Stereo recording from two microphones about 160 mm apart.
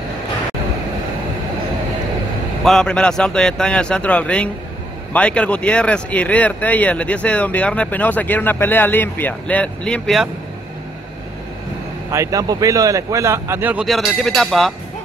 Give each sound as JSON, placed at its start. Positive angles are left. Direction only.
{"t": 2.6, "sound": "speech", "side_deg": 5}
{"t": 12.1, "sound": "a man's voice", "side_deg": -20}
{"t": 13.8, "sound": "speech", "side_deg": 0}